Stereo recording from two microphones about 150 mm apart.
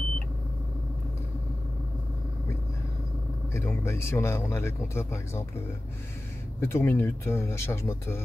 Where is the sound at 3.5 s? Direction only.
20° left (ahead or behind).